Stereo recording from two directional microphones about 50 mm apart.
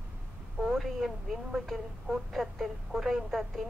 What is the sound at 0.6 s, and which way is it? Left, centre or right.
A woman's voice, centre.